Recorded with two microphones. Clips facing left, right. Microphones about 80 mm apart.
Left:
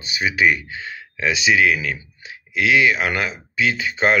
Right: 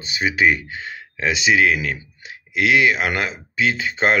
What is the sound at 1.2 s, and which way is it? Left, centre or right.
Speech, right.